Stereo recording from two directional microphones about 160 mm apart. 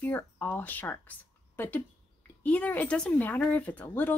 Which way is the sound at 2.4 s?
10° left (ahead or behind).